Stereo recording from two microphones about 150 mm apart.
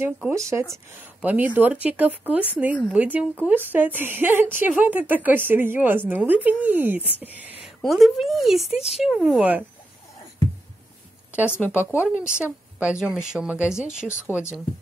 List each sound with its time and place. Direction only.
0.0 s speech: 15° right (ahead or behind)
7.6 s a woman's voice: centre (ahead or behind)
8.6 s speech: 45° left (ahead or behind)
8.9 s speech: 5° right (ahead or behind)
11.8 s speech: 10° right (ahead or behind)